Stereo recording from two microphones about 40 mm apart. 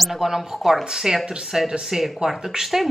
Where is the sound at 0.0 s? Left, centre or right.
Centre.